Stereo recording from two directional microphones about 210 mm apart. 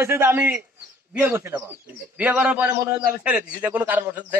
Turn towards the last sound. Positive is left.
turn(degrees=-10)  # may be behind; listen again after turning